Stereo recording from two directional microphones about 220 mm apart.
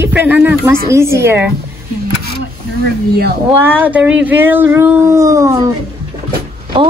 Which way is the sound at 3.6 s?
10° right (ahead or behind).